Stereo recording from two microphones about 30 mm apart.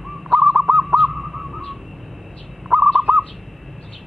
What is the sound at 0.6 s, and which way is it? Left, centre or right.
Owl, centre.